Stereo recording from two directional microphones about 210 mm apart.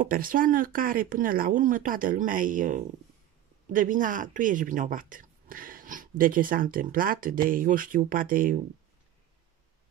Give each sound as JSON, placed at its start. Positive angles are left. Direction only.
{"t": 0.0, "sound": "speech", "side_deg": -40}